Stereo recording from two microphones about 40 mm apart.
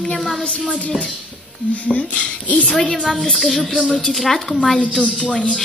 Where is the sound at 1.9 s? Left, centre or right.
Left.